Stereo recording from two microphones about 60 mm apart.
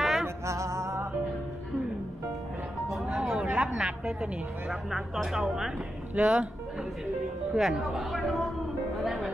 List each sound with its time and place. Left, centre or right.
0.0 s music: centre
0.5 s music: right
3.2 s a sound: centre
3.6 s a woman's voice: centre
7.5 s speech: centre
8.9 s music: centre